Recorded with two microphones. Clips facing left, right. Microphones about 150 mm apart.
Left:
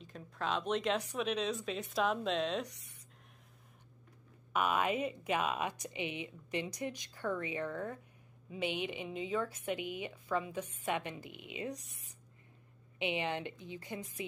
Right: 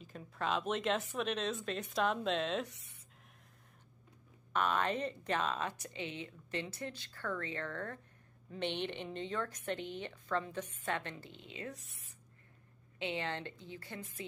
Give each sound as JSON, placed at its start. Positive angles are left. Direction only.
{"t": 0.0, "sound": "a woman's voice", "side_deg": 0}
{"t": 4.5, "sound": "speech", "side_deg": 10}
{"t": 13.0, "sound": "speech", "side_deg": 15}